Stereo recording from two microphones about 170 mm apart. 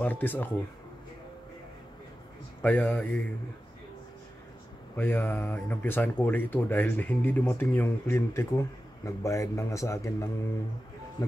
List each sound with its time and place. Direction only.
0.0 s speech: 10° left (ahead or behind)
2.6 s speech: 10° left (ahead or behind)
4.9 s speech: 10° left (ahead or behind)